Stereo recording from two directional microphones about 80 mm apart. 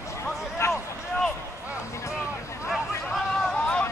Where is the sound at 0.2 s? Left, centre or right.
Left.